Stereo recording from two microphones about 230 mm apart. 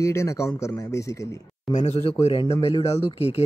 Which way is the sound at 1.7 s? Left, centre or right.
Left.